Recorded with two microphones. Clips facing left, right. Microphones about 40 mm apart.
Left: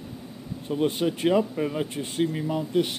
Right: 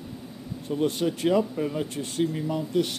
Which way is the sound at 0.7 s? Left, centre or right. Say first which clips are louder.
Left 1 dB; left.